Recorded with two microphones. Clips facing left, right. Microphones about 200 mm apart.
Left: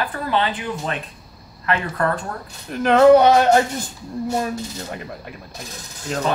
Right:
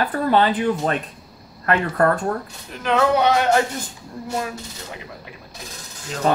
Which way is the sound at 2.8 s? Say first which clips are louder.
Left 7 dB; 45° left (ahead or behind).